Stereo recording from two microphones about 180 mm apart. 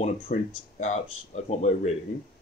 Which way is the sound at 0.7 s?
40° left (ahead or behind).